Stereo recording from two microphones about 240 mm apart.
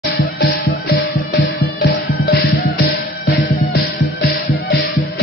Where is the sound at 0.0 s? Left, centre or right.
Left.